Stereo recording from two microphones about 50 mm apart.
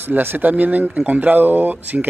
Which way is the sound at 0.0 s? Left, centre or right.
Right.